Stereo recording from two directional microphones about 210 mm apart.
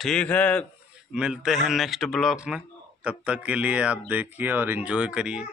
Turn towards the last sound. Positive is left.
turn(degrees=-5)  # may be behind; listen again after turning